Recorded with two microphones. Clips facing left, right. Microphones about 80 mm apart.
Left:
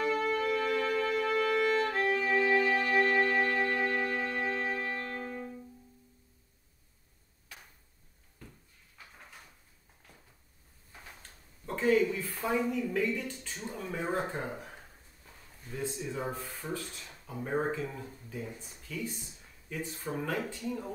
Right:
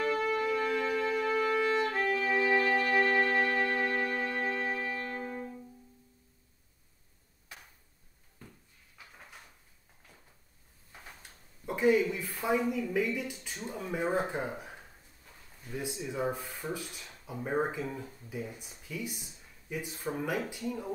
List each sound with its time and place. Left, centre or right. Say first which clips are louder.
0.0 s music: even; centre
2.0 s violin: left 1 dB; centre
2.4 s music: even; right
11.6 s a woman's voice: right 1 dB; centre